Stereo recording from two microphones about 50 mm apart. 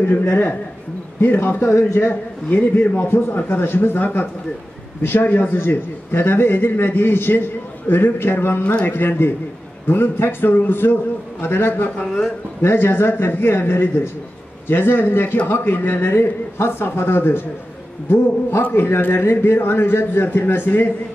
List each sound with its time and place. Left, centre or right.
0.2 s speech: left
1.2 s a man's voice: left
1.6 s speech: left
2.0 s a man's voice: left